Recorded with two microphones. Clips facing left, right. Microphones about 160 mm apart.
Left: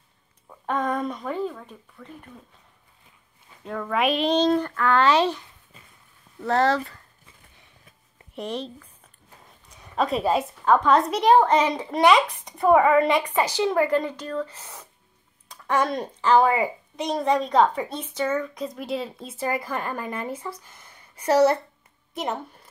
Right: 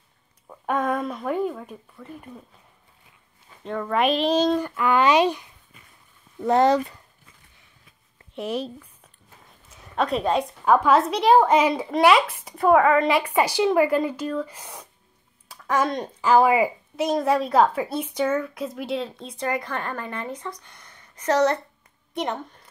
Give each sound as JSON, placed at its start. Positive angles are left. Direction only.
{"t": 0.5, "sound": "a woman's voice", "side_deg": -10}
{"t": 3.6, "sound": "speech", "side_deg": 0}
{"t": 8.4, "sound": "speech", "side_deg": -5}
{"t": 9.7, "sound": "a sound", "side_deg": 0}
{"t": 10.6, "sound": "a woman's voice", "side_deg": -10}
{"t": 13.3, "sound": "speech", "side_deg": -10}
{"t": 15.4, "sound": "a sound", "side_deg": -5}
{"t": 16.2, "sound": "a woman's voice", "side_deg": -10}